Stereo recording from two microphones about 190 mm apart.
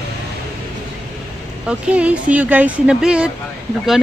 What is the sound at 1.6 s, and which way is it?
Speech, 5° right (ahead or behind).